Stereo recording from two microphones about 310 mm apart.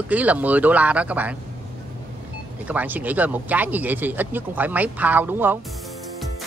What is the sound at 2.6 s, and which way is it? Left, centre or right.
Speech, centre.